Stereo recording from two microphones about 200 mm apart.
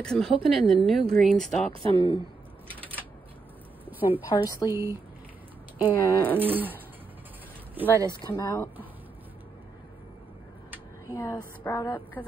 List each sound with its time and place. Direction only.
0.0 s a woman's voice: 5° left (ahead or behind)
1.9 s speech: 25° right (ahead or behind)
3.8 s a sound: 10° right (ahead or behind)
4.4 s a woman's voice: 15° left (ahead or behind)
4.6 s a sound: 15° right (ahead or behind)
5.8 s a woman's voice: 15° left (ahead or behind)
6.4 s a sound: 10° right (ahead or behind)
8.3 s a woman's voice: 15° left (ahead or behind)
11.1 s a woman's voice: 15° left (ahead or behind)